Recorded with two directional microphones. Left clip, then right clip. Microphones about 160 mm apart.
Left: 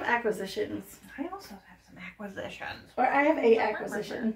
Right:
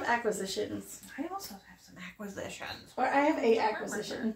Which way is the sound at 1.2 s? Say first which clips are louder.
Left 2 dB; 35° right (ahead or behind).